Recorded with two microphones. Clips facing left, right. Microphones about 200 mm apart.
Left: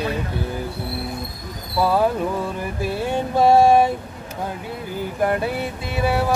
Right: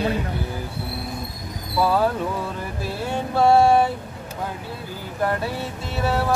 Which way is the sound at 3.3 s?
15° left (ahead or behind).